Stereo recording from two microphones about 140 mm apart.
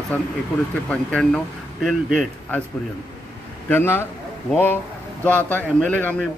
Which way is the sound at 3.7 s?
15° left (ahead or behind).